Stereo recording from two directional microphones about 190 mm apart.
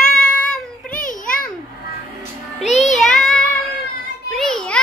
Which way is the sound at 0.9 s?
45° left (ahead or behind).